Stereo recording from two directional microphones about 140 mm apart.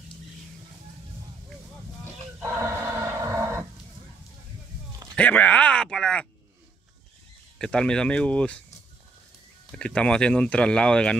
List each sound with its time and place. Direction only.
2.4 s horse: 20° right (ahead or behind)
5.1 s speech: 10° left (ahead or behind)
7.5 s speech: 5° left (ahead or behind)
9.7 s speech: 5° left (ahead or behind)